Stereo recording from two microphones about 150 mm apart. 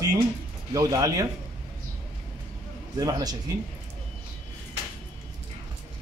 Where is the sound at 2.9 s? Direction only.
25° right (ahead or behind).